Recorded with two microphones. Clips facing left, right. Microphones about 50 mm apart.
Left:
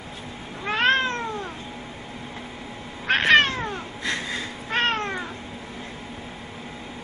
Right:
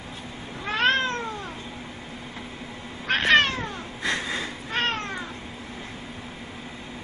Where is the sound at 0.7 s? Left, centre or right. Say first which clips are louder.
Left 2 dB; left.